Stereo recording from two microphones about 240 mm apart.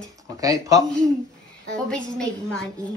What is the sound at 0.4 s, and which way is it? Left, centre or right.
Speech, centre.